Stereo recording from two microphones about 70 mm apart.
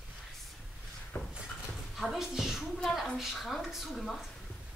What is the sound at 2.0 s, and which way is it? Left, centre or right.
A woman's voice, centre.